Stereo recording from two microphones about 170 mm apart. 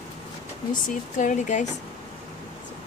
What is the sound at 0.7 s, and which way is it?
Speech, 50° left (ahead or behind).